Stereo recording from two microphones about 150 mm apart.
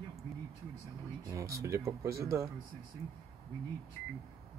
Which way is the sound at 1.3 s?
20° right (ahead or behind).